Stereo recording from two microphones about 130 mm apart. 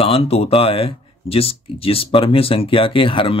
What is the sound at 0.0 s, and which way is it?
Speech, 45° left (ahead or behind).